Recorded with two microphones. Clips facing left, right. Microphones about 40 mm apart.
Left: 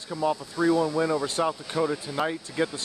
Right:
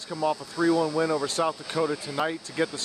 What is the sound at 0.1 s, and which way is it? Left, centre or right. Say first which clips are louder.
Speech: even; centre.